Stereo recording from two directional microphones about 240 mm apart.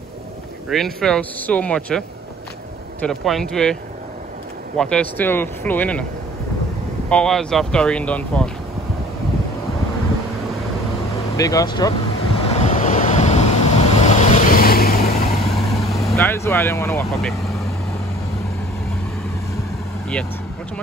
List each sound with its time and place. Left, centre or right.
0.7 s speech: centre
4.7 s speech: centre
7.1 s speech: centre
11.3 s speech: centre
12.4 s vehicle: left
15.8 s vehicle: centre
16.2 s speech: centre
17.1 s speech: centre